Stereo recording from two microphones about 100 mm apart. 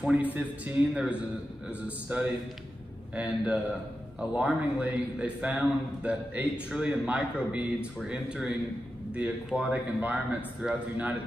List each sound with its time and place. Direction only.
0.1 s a man's voice: 15° right (ahead or behind)